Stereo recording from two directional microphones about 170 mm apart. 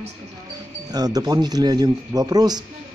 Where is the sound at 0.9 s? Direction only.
20° right (ahead or behind).